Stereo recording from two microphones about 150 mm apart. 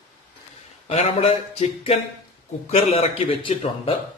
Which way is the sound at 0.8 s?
45° left (ahead or behind).